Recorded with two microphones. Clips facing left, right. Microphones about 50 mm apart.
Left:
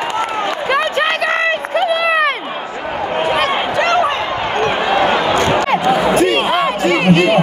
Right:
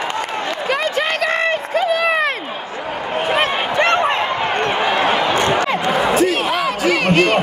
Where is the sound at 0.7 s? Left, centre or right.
Left.